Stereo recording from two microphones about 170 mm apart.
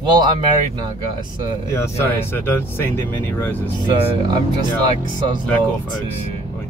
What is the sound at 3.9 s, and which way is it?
Speech, 25° right (ahead or behind).